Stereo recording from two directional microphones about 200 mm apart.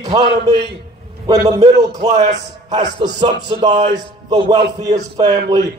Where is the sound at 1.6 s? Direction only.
35° right (ahead or behind).